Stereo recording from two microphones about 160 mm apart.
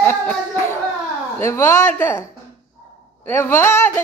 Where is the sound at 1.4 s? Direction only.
15° left (ahead or behind).